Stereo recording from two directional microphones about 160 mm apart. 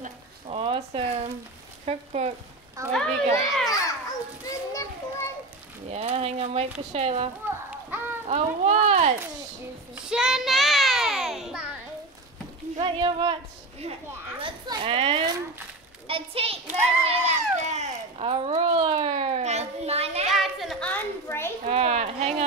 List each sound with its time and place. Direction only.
0.5 s speech: 40° right (ahead or behind)
2.9 s a child's voice: 5° left (ahead or behind)
4.5 s children playing: 20° left (ahead or behind)
5.9 s speech: 40° right (ahead or behind)
7.4 s children playing: 15° right (ahead or behind)
8.3 s speech: 40° right (ahead or behind)
9.9 s child singing: 5° right (ahead or behind)
12.7 s a child's voice: 30° right (ahead or behind)
17.0 s cat: 40° right (ahead or behind)
20.2 s a sound: centre (ahead or behind)
20.9 s a sound: 15° left (ahead or behind)
21.6 s a sound: 40° right (ahead or behind)